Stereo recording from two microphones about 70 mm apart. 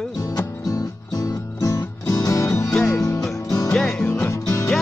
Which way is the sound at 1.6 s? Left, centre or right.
Left.